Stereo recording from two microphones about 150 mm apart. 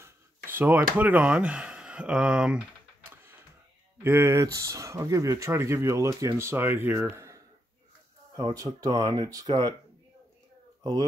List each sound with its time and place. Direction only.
0.0 s a sound: 15° right (ahead or behind)
0.9 s speech: 10° right (ahead or behind)
8.5 s speech: 25° right (ahead or behind)
10.8 s speech: 25° right (ahead or behind)